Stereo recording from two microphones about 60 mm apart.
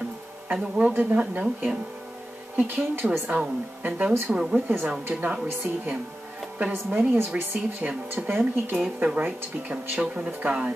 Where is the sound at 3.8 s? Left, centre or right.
Right.